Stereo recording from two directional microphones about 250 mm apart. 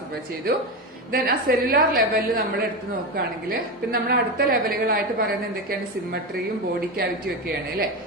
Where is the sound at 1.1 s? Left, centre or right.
Right.